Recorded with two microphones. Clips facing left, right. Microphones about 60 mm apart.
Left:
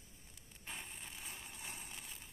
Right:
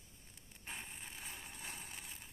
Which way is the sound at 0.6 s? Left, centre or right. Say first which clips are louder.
Right 1 dB; right.